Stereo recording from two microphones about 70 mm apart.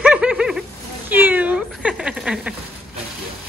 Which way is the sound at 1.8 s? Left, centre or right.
Centre.